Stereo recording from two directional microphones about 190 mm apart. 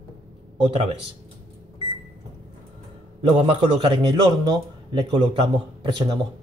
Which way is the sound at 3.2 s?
25° right (ahead or behind).